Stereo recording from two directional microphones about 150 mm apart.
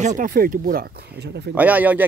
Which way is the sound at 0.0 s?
60° right (ahead or behind).